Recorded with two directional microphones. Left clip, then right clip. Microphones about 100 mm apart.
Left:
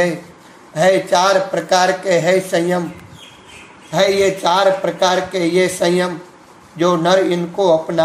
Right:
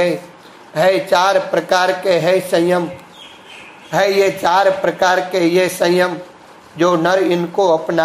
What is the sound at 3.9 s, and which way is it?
A man's voice, 20° right (ahead or behind).